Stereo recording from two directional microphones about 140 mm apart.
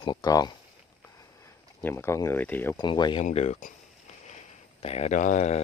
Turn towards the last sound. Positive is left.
turn(degrees=55)  # may be behind; listen again after turning